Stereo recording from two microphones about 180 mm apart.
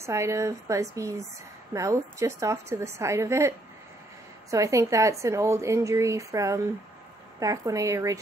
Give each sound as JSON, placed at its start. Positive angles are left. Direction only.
{"t": 0.0, "sound": "speech", "side_deg": -15}